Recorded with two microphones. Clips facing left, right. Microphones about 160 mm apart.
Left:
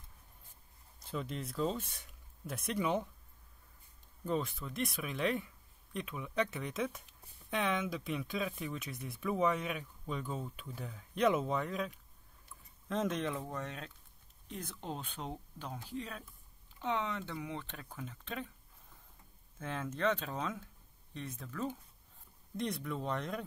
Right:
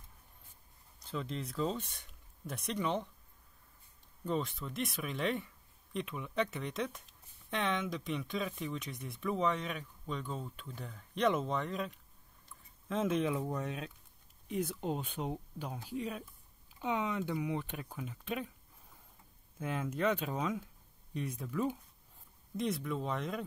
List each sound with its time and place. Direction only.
1.1 s speech: 5° left (ahead or behind)
4.2 s speech: centre (ahead or behind)
19.6 s speech: 10° right (ahead or behind)
22.6 s speech: centre (ahead or behind)